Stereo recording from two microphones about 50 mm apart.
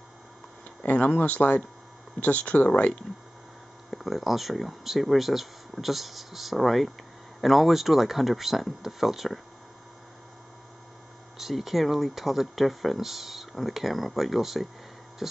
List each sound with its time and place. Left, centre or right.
0.8 s speech: left
3.9 s speech: centre
11.3 s speech: centre